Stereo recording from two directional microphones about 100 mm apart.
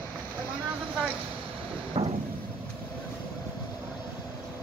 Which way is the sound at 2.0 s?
45° right (ahead or behind).